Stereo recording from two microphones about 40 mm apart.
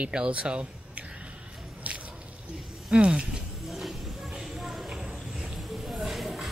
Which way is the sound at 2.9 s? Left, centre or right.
Right.